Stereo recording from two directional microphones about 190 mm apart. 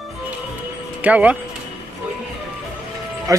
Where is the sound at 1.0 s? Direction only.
5° right (ahead or behind).